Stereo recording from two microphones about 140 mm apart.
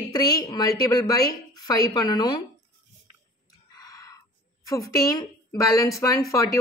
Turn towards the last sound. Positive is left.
turn(degrees=25)  # may be behind; listen again after turning